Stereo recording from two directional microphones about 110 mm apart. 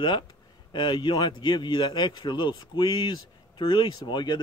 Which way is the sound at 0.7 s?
45° left (ahead or behind).